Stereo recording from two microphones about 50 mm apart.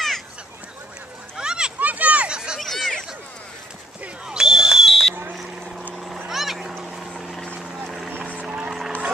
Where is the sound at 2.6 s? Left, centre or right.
Centre.